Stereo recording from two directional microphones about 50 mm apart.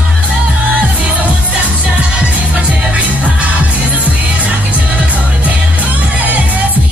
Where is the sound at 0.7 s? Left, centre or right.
Right.